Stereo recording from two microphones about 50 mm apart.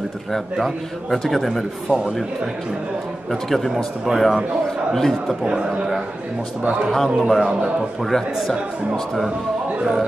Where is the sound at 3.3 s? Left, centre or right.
Centre.